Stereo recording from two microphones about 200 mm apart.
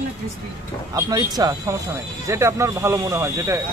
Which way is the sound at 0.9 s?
20° right (ahead or behind).